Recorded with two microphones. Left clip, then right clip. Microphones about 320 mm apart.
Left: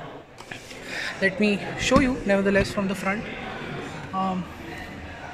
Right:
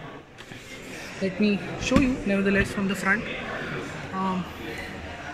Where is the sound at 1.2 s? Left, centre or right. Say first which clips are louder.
Left 3 dB; left.